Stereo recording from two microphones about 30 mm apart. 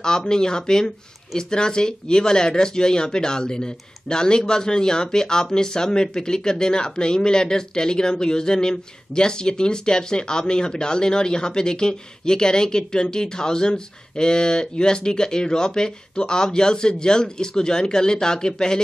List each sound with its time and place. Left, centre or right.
0.0 s speech: left